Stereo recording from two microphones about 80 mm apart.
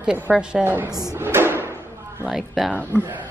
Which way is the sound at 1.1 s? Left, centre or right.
Right.